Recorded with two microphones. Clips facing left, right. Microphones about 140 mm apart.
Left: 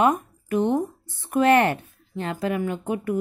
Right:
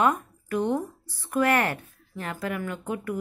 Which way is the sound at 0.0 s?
20° left (ahead or behind).